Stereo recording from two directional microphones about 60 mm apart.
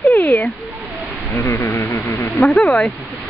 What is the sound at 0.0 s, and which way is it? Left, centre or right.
Cat, left.